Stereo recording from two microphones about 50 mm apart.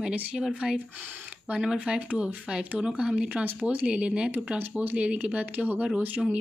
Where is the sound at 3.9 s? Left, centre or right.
Right.